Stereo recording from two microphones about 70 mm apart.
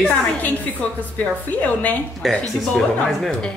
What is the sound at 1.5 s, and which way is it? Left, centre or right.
Speech, left.